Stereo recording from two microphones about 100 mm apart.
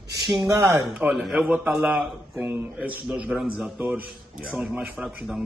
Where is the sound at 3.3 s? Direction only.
5° right (ahead or behind).